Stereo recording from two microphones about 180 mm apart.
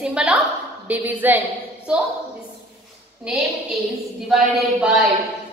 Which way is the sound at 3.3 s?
5° right (ahead or behind).